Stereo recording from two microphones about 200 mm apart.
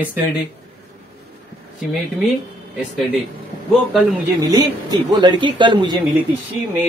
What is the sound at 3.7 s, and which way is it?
Speech, centre (ahead or behind).